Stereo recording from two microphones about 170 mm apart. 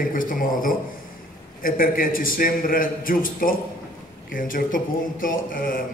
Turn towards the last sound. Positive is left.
turn(degrees=55)  # may be behind; listen again after turning